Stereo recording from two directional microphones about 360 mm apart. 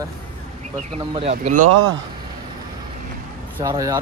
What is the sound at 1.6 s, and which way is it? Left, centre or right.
Speech, right.